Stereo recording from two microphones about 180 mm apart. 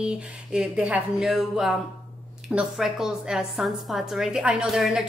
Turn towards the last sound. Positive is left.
turn(degrees=0)  # may be behind; listen again after turning